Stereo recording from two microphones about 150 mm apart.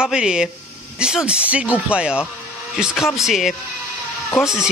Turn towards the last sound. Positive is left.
turn(degrees=-5)  # may be behind; listen again after turning